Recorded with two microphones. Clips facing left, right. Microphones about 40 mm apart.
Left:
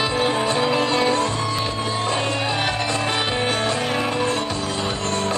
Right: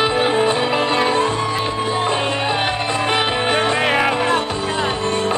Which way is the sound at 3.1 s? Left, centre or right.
Right.